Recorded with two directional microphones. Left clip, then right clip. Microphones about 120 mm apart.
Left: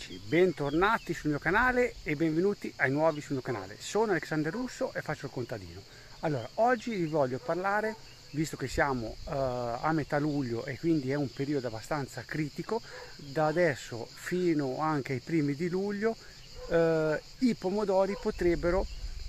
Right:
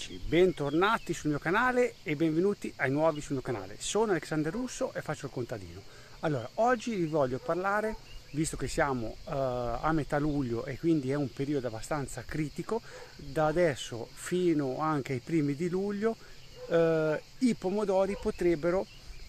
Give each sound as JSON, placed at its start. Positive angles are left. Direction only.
{"t": 0.3, "sound": "speech", "side_deg": -5}
{"t": 10.3, "sound": "speech", "side_deg": -15}
{"t": 14.8, "sound": "speech", "side_deg": -10}